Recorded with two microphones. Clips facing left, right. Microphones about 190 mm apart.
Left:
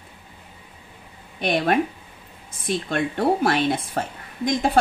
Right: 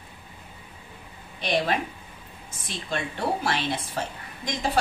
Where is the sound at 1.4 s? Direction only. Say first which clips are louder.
Left 5 dB; 55° left (ahead or behind).